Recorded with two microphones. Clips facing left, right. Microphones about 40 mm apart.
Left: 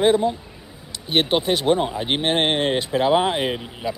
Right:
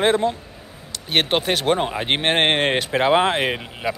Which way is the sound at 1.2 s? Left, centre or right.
Right.